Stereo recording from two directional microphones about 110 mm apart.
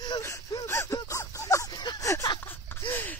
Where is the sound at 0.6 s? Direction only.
25° left (ahead or behind).